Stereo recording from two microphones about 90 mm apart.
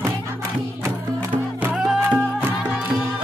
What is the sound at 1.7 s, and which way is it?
Music, 5° right (ahead or behind).